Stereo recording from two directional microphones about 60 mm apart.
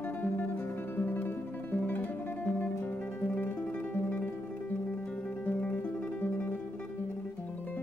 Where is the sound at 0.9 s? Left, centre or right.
Left.